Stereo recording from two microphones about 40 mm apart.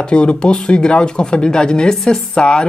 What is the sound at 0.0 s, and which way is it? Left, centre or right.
Speech, left.